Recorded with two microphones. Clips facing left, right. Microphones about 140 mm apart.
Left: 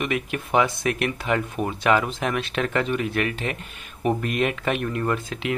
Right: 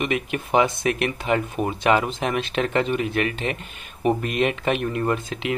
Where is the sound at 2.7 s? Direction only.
25° right (ahead or behind).